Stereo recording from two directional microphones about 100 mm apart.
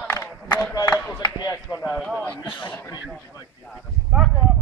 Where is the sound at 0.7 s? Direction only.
35° left (ahead or behind).